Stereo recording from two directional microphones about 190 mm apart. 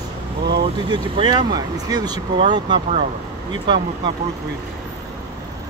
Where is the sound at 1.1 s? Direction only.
25° right (ahead or behind).